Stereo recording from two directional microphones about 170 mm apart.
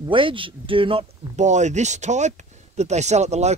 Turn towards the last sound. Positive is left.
turn(degrees=-40)  # may be behind; listen again after turning